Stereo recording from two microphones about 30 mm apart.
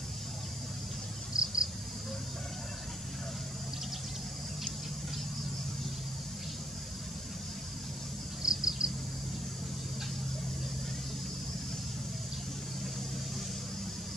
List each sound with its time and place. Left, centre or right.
1.3 s cricket: right
8.4 s insect: right